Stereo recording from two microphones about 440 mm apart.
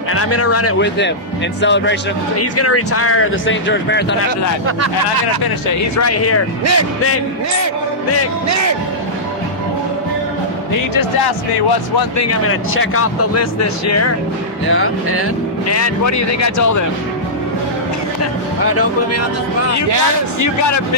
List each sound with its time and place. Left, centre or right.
0.1 s speech: left
5.8 s speech: left
6.6 s speech: right
10.7 s speech: left
12.2 s speech: left
18.7 s speech: left
20.3 s speech: left